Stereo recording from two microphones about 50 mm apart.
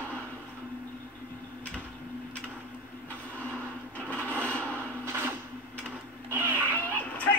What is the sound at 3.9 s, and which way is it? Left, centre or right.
Wood, left.